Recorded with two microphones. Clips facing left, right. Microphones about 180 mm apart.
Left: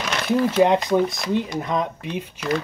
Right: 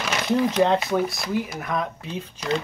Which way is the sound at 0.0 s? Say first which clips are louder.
Left 1 dB; 5° right (ahead or behind).